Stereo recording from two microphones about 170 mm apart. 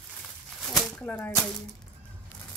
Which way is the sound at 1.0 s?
10° left (ahead or behind).